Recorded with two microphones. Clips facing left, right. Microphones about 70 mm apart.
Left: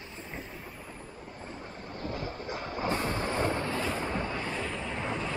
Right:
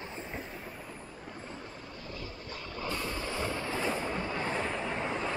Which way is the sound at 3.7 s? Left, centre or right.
Centre.